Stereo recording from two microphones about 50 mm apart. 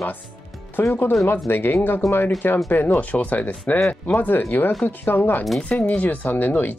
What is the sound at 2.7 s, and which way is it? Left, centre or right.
Speech, left.